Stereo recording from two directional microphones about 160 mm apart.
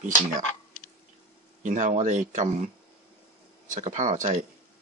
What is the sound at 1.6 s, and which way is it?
Speech, 50° right (ahead or behind).